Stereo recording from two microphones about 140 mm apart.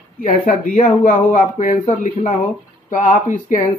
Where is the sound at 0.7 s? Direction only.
50° left (ahead or behind); by 3.6 s 70° left (ahead or behind).